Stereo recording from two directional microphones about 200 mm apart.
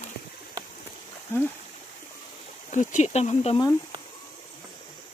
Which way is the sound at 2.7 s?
40° left (ahead or behind).